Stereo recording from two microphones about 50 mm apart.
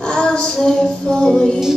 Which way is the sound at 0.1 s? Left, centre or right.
Centre.